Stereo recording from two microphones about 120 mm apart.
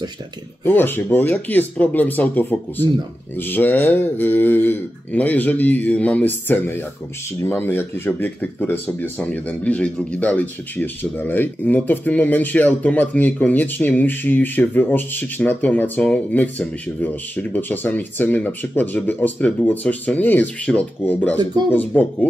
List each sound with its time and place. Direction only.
0.7 s speech: 15° left (ahead or behind)